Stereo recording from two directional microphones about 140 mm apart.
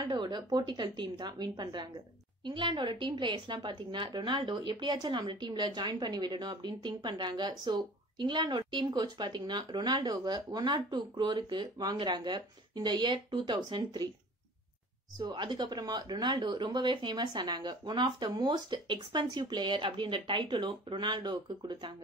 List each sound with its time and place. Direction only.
0.0 s a woman's voice: 30° right (ahead or behind)
15.1 s a woman's voice: 30° right (ahead or behind)